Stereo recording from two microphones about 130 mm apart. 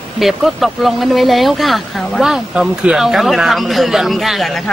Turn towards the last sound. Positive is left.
turn(degrees=0)  # may be behind; listen again after turning